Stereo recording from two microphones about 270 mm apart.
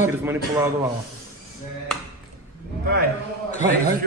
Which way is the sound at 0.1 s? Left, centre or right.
Centre.